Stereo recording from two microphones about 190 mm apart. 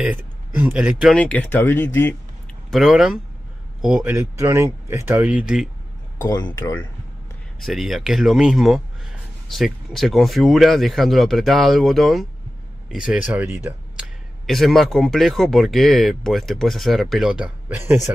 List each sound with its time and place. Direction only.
0.6 s speech: 10° right (ahead or behind)
1.1 s speech: 5° left (ahead or behind)
2.7 s speech: centre (ahead or behind)
6.2 s speech: 15° left (ahead or behind)
7.6 s speech: centre (ahead or behind)
14.4 s speech: centre (ahead or behind)